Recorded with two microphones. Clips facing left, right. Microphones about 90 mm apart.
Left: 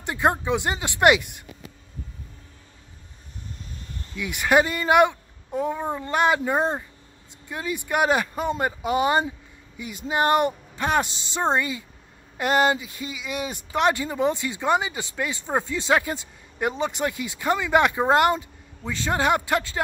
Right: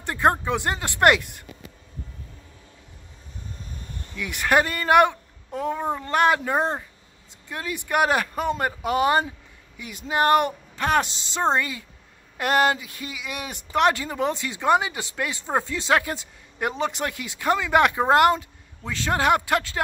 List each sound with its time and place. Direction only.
0.0 s speech: 5° left (ahead or behind)
4.2 s speech: 10° left (ahead or behind)
9.8 s speech: centre (ahead or behind)